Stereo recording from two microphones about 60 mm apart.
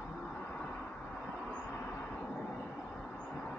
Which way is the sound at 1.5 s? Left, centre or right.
Left.